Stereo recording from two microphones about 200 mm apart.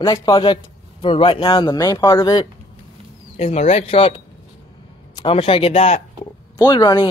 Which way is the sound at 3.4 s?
30° left (ahead or behind).